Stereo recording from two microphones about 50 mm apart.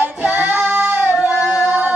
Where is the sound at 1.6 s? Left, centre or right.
Right.